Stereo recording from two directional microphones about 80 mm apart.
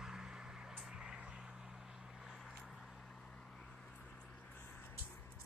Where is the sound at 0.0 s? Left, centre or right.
Centre.